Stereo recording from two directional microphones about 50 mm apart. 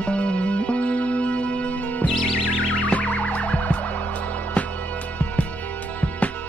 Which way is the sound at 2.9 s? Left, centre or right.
Left.